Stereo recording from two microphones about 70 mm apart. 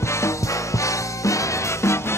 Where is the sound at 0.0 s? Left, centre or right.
Left.